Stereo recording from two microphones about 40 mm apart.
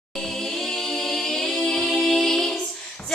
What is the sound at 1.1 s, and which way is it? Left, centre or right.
Music, centre.